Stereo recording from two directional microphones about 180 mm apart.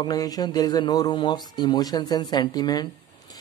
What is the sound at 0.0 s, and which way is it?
Speech, 20° left (ahead or behind).